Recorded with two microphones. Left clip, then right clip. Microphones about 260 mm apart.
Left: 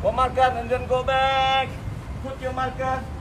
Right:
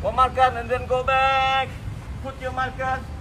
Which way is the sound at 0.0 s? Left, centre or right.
Centre.